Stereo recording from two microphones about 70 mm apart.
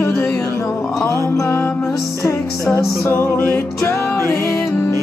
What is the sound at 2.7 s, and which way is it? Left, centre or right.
Music, left.